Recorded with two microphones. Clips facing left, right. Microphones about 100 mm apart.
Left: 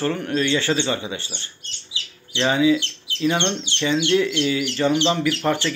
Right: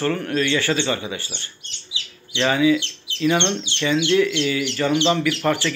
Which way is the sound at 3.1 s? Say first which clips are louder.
Left 1 dB; 20° right (ahead or behind).